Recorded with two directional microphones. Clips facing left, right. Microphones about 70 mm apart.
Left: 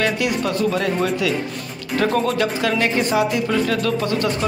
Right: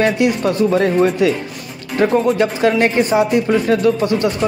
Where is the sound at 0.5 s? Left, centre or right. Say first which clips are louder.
Right 6 dB; right.